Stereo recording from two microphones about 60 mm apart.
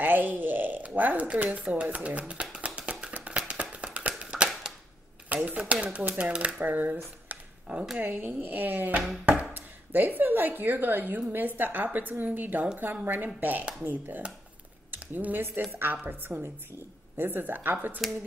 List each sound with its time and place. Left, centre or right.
0.0 s speech: right
2.5 s a sound: right
3.7 s tap: right
4.2 s a sound: centre
5.3 s speech: right
7.3 s a sound: right
8.0 s speech: right
9.0 s chopping: centre
9.4 s speech: right